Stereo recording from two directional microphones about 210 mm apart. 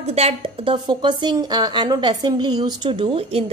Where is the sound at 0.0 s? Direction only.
30° right (ahead or behind).